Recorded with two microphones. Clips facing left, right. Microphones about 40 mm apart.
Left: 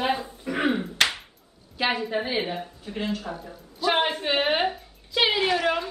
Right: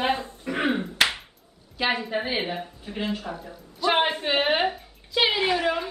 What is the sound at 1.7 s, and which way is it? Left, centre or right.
A woman's voice, centre.